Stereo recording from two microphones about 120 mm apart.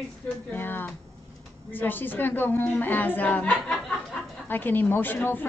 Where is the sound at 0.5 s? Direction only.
15° left (ahead or behind).